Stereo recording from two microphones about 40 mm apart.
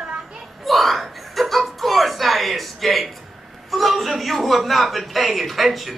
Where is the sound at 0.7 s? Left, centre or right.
Centre.